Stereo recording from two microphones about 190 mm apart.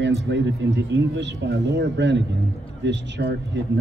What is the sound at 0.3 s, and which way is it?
Speech, 65° right (ahead or behind).